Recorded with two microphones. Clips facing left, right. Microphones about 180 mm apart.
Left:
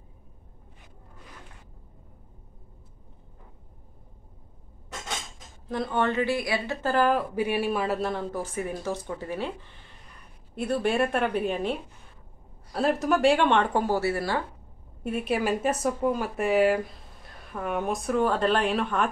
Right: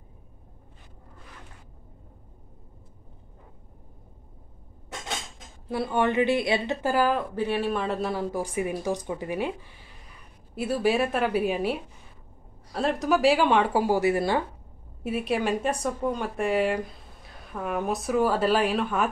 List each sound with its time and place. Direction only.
5.7 s speech: 10° right (ahead or behind)
6.9 s speech: centre (ahead or behind)
7.3 s speech: 10° left (ahead or behind); by 14.4 s 15° right (ahead or behind)
15.0 s speech: centre (ahead or behind)